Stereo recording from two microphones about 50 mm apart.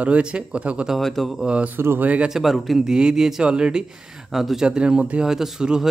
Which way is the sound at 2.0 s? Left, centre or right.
Right.